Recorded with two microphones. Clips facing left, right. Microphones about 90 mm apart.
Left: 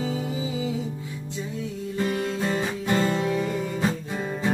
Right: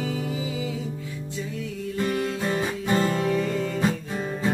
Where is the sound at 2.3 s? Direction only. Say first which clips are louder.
Even; 5° right (ahead or behind).